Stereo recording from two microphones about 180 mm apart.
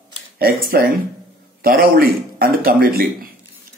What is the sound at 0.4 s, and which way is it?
A man's voice, 55° right (ahead or behind).